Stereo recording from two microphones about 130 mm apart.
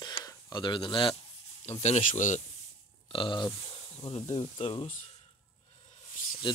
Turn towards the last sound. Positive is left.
turn(degrees=40)  # may be behind; listen again after turning